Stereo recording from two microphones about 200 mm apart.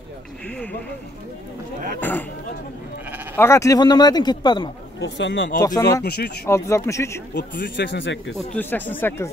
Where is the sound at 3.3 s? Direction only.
15° left (ahead or behind).